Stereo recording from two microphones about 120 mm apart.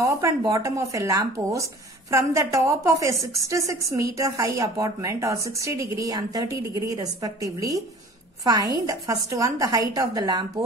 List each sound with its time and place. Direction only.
0.0 s a woman's voice: 25° right (ahead or behind)